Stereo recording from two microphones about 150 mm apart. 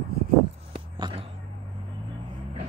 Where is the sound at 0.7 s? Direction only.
35° right (ahead or behind).